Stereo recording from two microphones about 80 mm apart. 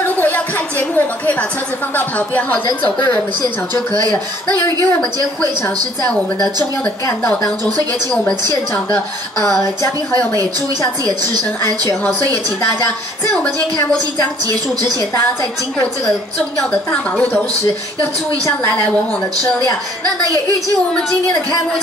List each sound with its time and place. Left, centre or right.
0.0 s a sound: left
2.0 s speech: left
3.9 s a woman's voice: right
11.1 s a woman's voice: right
14.4 s speech: right
16.7 s speech: centre